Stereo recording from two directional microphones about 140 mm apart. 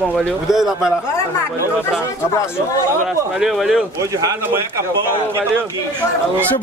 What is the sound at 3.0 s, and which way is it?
Speech, centre (ahead or behind).